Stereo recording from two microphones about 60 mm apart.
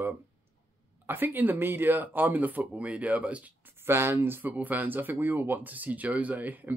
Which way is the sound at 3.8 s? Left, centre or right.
Right.